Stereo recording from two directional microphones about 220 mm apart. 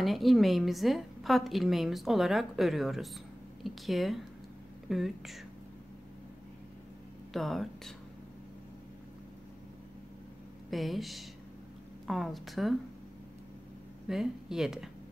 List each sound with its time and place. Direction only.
0.0 s a woman's voice: centre (ahead or behind)
7.3 s a woman's voice: centre (ahead or behind)
10.7 s a woman's voice: centre (ahead or behind)
14.0 s a woman's voice: centre (ahead or behind)